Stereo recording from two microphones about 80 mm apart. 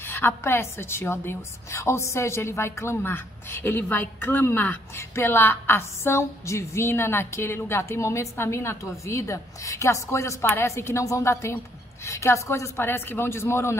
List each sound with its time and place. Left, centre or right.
0.0 s a woman's voice: left